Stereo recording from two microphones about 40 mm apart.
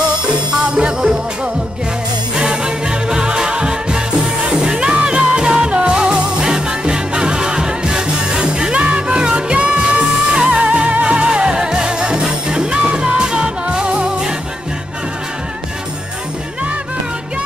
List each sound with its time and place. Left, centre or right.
0.3 s music: right
10.6 s music: right